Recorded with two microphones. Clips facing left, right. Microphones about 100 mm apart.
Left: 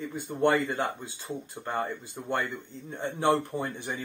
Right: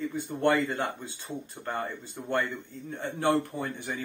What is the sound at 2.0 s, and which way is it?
Speech, 15° left (ahead or behind).